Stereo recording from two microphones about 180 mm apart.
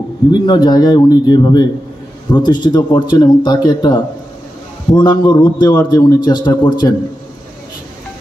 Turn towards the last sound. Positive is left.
turn(degrees=25)  # may be behind; listen again after turning